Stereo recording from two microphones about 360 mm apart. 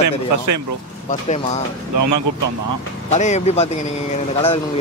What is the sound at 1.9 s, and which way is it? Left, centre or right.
Speech, right.